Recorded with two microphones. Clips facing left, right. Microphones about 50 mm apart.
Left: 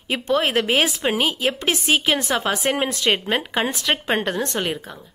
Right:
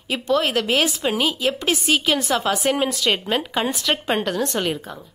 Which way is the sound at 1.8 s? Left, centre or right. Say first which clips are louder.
Left 1 dB; left.